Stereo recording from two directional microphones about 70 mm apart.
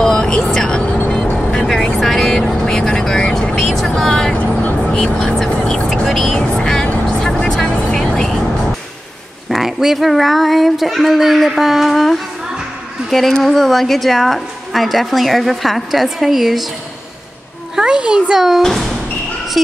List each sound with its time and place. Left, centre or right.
0.0 s vehicle: centre
4.4 s vehicle: left
4.9 s vehicle: centre
6.5 s music: centre
7.1 s vehicle: centre
9.5 s a woman's voice: centre
17.7 s a child's voice: centre
18.6 s speech: centre